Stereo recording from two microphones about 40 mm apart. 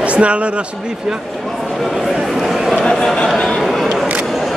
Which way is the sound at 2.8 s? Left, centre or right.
Centre.